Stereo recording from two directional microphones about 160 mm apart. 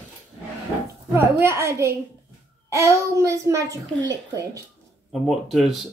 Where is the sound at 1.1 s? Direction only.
15° right (ahead or behind).